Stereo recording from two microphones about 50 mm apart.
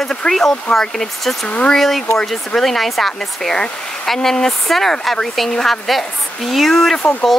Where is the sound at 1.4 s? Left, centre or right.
Left.